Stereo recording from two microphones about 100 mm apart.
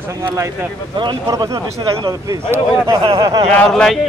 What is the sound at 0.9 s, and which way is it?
Speech, 50° right (ahead or behind).